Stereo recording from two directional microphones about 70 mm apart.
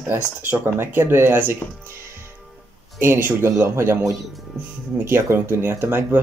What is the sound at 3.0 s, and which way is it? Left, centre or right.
Speech, right.